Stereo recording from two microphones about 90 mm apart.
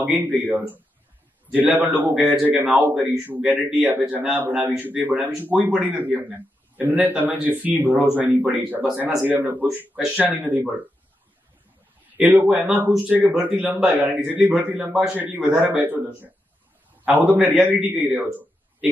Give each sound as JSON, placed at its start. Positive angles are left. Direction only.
{"t": 0.0, "sound": "speech", "side_deg": -20}
{"t": 2.6, "sound": "speech", "side_deg": -10}
{"t": 3.3, "sound": "speech", "side_deg": -20}
{"t": 12.2, "sound": "speech", "side_deg": -15}
{"t": 17.0, "sound": "speech", "side_deg": -20}
{"t": 18.1, "sound": "a sound", "side_deg": -15}